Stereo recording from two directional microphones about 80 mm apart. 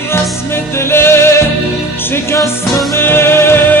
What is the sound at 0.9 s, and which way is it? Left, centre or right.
Music, left.